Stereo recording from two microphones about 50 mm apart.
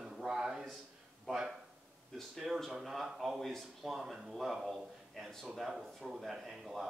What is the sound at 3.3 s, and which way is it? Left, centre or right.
Speech, centre.